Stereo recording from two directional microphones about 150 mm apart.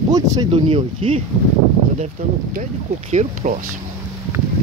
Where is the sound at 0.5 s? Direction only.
35° right (ahead or behind).